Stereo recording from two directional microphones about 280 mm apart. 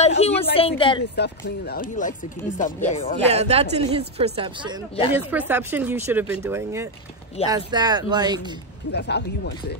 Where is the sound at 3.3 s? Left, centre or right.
Right.